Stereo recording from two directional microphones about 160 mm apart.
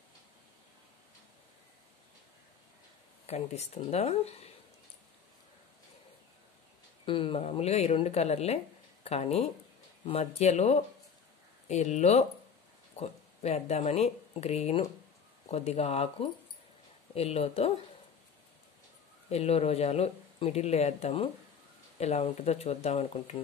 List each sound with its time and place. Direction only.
3.3 s speech: 40° left (ahead or behind)
7.1 s speech: 35° left (ahead or behind)
19.3 s speech: 40° left (ahead or behind)